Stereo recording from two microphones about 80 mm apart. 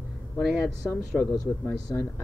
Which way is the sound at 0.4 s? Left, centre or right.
Centre.